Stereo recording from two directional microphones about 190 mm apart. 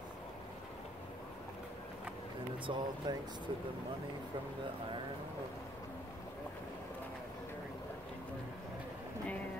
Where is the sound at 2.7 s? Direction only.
25° right (ahead or behind).